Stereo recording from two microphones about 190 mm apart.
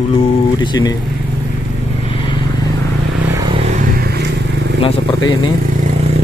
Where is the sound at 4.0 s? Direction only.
55° right (ahead or behind).